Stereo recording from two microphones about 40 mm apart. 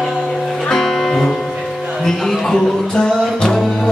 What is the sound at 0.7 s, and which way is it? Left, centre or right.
Music, centre.